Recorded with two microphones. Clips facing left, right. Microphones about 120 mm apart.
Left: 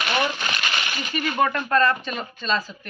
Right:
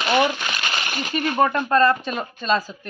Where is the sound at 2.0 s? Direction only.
40° right (ahead or behind).